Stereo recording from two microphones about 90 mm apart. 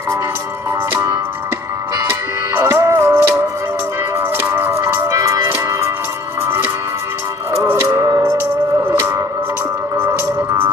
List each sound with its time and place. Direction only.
2.0 s music: 25° right (ahead or behind)
5.0 s music: 35° right (ahead or behind)